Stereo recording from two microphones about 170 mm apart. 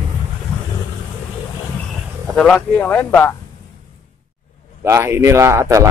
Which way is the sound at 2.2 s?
5° left (ahead or behind).